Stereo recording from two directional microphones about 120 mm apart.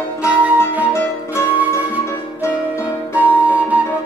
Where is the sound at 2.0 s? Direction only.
20° left (ahead or behind).